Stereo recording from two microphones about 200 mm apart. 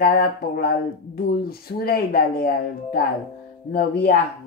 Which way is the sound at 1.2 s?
50° left (ahead or behind).